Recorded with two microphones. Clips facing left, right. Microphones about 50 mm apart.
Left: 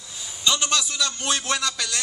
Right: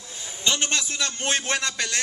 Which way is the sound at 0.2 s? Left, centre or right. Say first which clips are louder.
Left 1 dB; right.